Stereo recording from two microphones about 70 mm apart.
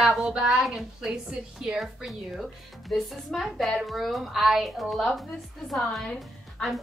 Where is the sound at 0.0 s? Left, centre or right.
Centre.